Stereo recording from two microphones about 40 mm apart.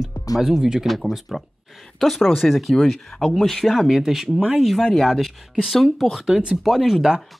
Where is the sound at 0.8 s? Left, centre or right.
Centre.